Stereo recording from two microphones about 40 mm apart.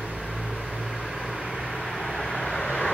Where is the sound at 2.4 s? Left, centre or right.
Centre.